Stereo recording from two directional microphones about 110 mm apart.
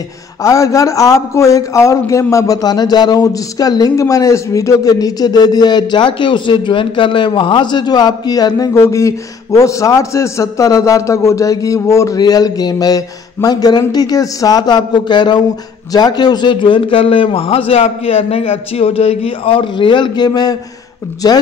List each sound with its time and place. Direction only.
0.4 s a man's voice: 30° left (ahead or behind)